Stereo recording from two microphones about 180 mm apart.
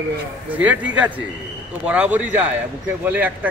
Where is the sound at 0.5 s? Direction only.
10° right (ahead or behind).